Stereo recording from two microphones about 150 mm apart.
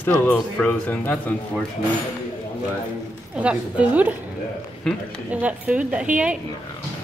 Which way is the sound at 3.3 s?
10° right (ahead or behind).